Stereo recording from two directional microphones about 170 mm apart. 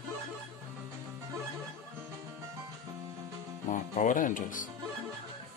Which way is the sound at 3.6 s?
45° left (ahead or behind).